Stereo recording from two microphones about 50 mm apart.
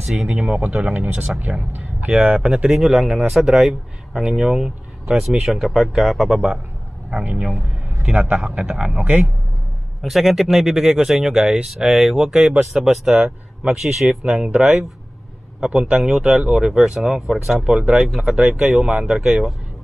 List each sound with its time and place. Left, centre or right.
0.0 s speech: centre
0.3 s speech: right
2.7 s speech: centre
4.6 s a sound: centre
5.2 s speech: centre
8.0 s speech: right
10.0 s speech: centre
13.1 s speech: centre